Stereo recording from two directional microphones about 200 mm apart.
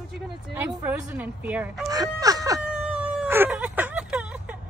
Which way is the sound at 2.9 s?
5° right (ahead or behind).